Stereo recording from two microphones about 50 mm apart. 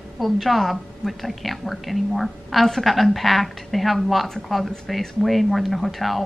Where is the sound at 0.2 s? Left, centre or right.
Centre.